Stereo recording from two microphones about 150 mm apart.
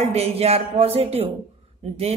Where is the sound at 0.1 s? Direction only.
45° right (ahead or behind).